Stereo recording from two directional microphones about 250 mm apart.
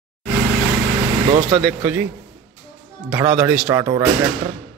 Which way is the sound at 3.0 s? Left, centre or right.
Centre.